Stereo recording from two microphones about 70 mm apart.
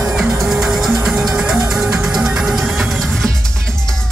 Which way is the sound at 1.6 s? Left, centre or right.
Right.